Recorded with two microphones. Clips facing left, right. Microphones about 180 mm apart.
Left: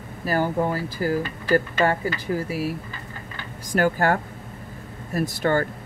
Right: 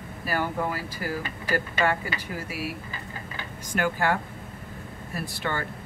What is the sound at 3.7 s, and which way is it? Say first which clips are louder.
Speech: left 5 dB; 45° left (ahead or behind).